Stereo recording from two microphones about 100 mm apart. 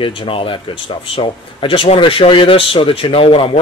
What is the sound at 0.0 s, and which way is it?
Speech, 65° left (ahead or behind).